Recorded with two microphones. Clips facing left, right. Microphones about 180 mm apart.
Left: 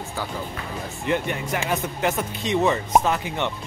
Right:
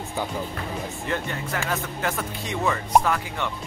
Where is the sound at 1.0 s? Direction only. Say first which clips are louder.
Left 7 dB; 20° left (ahead or behind).